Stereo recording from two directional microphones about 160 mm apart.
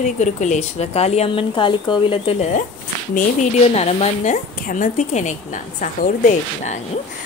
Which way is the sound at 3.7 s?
40° left (ahead or behind).